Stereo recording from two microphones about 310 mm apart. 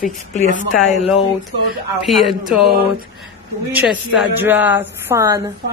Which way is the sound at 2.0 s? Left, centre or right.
Centre.